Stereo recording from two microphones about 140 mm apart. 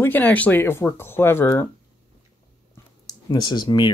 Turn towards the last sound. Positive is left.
turn(degrees=30)  # may be behind; listen again after turning